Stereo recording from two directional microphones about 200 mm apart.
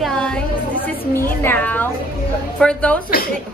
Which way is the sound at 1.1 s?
10° left (ahead or behind).